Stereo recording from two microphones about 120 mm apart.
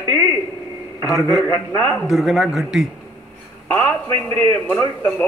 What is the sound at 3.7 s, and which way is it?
A man's voice, 20° left (ahead or behind).